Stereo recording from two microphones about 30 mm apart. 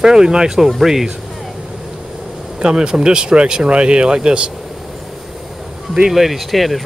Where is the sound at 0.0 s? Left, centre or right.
Right.